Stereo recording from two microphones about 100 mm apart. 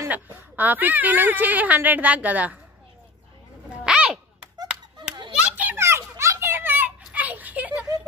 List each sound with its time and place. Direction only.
0.1 s speech: 15° right (ahead or behind)
3.8 s a sound: 10° right (ahead or behind)
4.6 s clapping: 45° right (ahead or behind)
5.4 s children playing: 15° right (ahead or behind)
5.8 s children playing: 25° right (ahead or behind)
7.1 s a sound: 15° right (ahead or behind)